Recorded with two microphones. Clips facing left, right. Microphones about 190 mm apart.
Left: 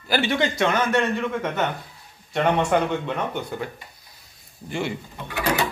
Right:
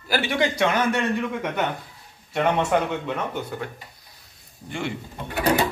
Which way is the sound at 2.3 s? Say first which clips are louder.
Left 1 dB; 5° right (ahead or behind).